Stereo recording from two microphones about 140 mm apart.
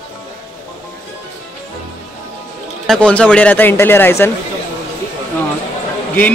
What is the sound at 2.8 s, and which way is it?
Speech, 5° left (ahead or behind).